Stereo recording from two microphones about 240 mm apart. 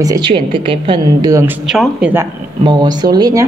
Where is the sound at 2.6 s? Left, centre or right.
Centre.